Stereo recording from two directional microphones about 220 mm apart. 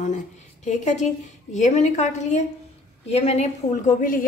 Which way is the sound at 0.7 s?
35° left (ahead or behind).